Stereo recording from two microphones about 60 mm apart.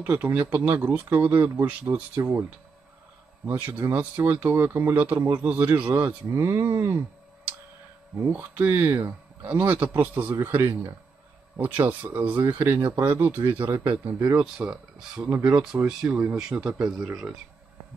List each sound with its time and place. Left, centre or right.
0.0 s speech: right
3.4 s speech: right
5.9 s speech: right
8.3 s speech: right
10.4 s speech: right
11.5 s speech: right
13.6 s speech: right
13.8 s speech: right
14.7 s speech: centre